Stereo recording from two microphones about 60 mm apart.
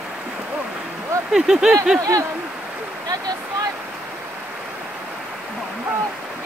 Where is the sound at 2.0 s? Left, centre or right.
Right.